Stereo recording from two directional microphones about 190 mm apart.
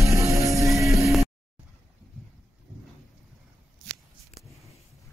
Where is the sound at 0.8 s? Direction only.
15° right (ahead or behind).